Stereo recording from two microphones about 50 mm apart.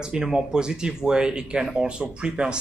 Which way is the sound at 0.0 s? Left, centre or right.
Centre.